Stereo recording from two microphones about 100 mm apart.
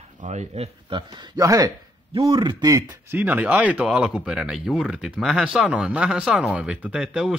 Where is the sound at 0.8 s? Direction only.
50° right (ahead or behind); by 1.7 s 35° right (ahead or behind).